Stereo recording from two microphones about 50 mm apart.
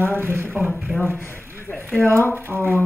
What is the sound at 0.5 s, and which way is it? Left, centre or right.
Speech, centre.